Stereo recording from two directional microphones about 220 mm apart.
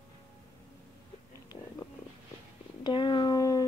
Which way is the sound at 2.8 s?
20° left (ahead or behind).